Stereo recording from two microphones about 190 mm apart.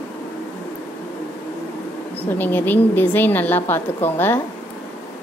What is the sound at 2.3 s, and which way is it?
A woman's voice, 10° left (ahead or behind).